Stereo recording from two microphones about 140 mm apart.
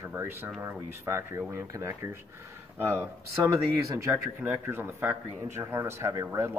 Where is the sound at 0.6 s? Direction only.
15° right (ahead or behind).